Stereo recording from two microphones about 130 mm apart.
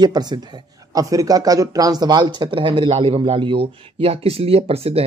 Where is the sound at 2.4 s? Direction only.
40° right (ahead or behind).